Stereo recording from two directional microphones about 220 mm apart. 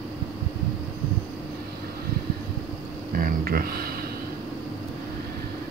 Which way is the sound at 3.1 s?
40° right (ahead or behind).